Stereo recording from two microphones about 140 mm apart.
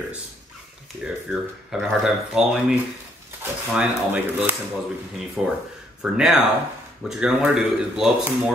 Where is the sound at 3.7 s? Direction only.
5° right (ahead or behind).